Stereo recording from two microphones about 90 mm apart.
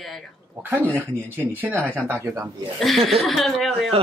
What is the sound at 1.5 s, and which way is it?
Speech, 25° right (ahead or behind).